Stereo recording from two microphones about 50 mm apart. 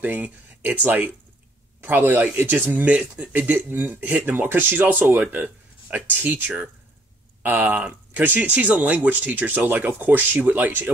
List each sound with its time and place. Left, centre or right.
0.0 s speech: right
1.8 s speech: right
2.7 s speech: right
7.7 s speech: right